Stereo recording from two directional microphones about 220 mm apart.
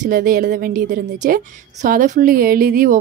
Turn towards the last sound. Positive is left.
turn(degrees=-40)  # may be behind; listen again after turning